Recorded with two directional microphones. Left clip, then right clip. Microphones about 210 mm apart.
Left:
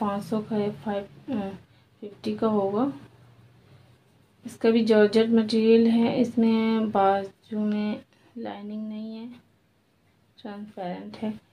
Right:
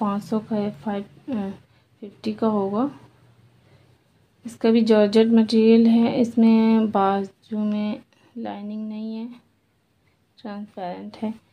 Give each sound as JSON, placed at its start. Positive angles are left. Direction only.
{"t": 0.0, "sound": "a woman's voice", "side_deg": -35}
{"t": 4.5, "sound": "speech", "side_deg": -40}
{"t": 10.3, "sound": "a woman's voice", "side_deg": -45}